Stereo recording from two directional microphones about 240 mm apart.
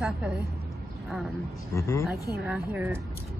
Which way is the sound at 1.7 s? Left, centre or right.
Centre.